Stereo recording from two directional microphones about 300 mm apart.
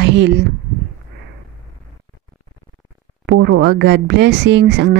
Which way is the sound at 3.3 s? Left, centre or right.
Right.